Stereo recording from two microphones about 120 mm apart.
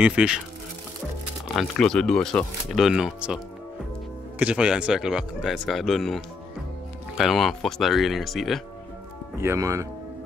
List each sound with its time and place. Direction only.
0.0 s speech: 10° right (ahead or behind)
1.5 s speech: 5° left (ahead or behind)
4.4 s speech: 10° right (ahead or behind)
9.4 s speech: 25° right (ahead or behind)